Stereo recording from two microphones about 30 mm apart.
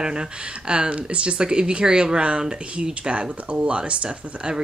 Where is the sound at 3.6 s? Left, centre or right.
Right.